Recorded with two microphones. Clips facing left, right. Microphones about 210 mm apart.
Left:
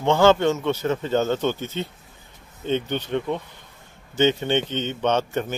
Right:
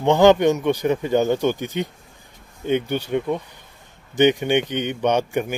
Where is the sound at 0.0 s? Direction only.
15° right (ahead or behind).